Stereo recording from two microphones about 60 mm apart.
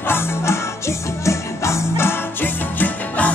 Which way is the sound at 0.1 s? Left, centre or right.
Left.